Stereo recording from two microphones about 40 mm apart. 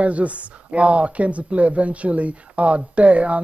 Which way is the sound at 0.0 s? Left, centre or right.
Right.